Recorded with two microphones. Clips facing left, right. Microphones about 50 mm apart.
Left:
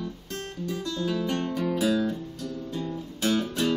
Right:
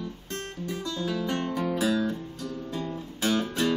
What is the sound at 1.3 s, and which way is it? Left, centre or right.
Guitar, right.